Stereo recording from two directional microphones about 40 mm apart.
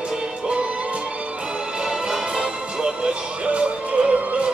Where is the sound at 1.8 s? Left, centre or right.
Centre.